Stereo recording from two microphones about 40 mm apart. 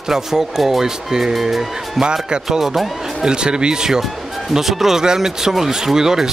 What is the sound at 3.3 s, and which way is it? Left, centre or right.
Speech, right.